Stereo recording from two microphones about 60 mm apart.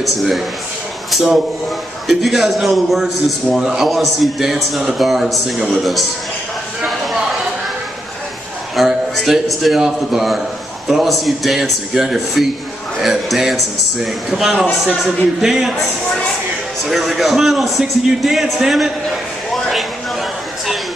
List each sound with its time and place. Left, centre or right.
0.0 s speech: centre
8.7 s speech: centre
16.8 s speech: centre